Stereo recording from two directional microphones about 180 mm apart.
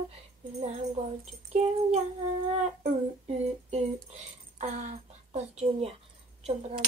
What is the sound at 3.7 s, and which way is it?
Speech, 35° right (ahead or behind).